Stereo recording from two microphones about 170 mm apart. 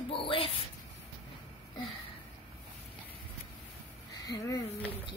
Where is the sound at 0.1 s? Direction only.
30° left (ahead or behind).